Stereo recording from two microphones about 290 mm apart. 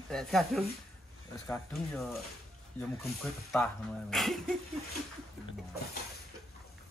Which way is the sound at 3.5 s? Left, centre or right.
Centre.